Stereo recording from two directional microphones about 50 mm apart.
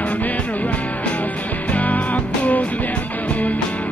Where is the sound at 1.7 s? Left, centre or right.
Left.